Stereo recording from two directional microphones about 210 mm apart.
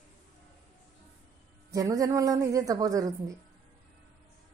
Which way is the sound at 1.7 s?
15° right (ahead or behind).